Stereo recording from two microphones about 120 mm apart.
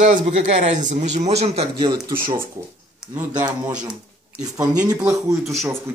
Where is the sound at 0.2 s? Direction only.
70° right (ahead or behind).